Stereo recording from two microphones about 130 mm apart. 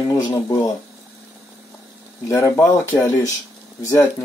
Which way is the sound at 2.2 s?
20° left (ahead or behind).